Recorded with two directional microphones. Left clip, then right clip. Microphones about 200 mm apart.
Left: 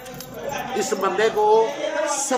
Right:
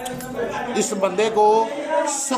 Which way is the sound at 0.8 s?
15° right (ahead or behind).